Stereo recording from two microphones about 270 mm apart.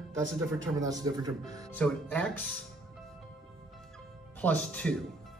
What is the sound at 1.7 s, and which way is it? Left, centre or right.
Speech, centre.